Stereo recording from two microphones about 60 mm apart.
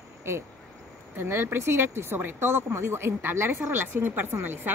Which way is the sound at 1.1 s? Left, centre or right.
Right.